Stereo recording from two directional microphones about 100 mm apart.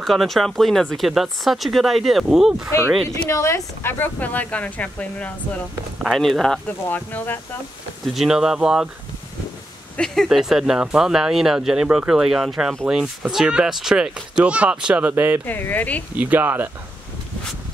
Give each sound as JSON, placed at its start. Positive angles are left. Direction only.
{"t": 0.0, "sound": "speech", "side_deg": 0}
{"t": 3.3, "sound": "speech", "side_deg": 30}
{"t": 6.1, "sound": "speech", "side_deg": 5}
{"t": 6.9, "sound": "speech", "side_deg": 20}
{"t": 8.1, "sound": "speech", "side_deg": -5}
{"t": 9.9, "sound": "speech", "side_deg": 5}
{"t": 15.4, "sound": "speech", "side_deg": 20}
{"t": 16.2, "sound": "speech", "side_deg": -15}